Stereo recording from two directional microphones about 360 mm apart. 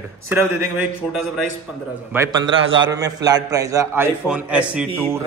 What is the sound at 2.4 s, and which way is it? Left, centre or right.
Speech, right.